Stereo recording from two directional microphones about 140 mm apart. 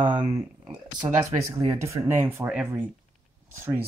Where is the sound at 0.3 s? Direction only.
25° right (ahead or behind).